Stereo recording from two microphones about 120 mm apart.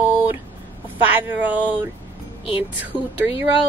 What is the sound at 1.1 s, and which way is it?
Speech, 15° right (ahead or behind).